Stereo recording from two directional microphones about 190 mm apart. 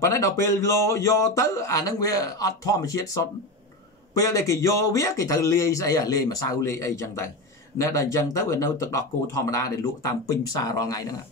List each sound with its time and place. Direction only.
0.0 s speech: 15° left (ahead or behind)
4.3 s speech: 15° left (ahead or behind)